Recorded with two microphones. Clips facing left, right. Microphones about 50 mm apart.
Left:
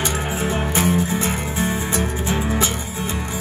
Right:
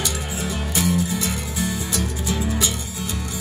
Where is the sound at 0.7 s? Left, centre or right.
Left.